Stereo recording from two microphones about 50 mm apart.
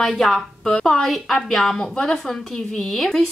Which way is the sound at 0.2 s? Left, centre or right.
Centre.